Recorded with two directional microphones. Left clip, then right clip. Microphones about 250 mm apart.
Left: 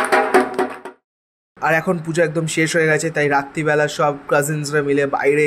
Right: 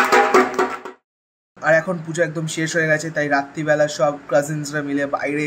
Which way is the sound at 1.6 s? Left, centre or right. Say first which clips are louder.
Even; left.